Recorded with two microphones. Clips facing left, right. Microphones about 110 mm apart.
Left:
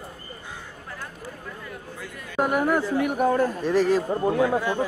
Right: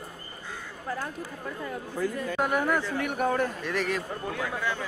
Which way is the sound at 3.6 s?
35° left (ahead or behind).